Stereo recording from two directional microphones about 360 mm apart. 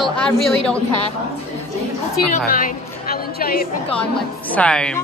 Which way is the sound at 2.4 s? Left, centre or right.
Left.